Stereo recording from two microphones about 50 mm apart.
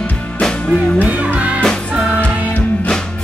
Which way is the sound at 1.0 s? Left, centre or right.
Right.